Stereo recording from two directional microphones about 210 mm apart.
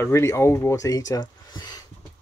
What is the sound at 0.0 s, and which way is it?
Speech, 15° left (ahead or behind).